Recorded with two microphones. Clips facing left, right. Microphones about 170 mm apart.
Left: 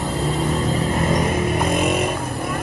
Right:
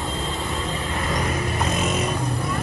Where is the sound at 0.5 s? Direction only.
40° left (ahead or behind).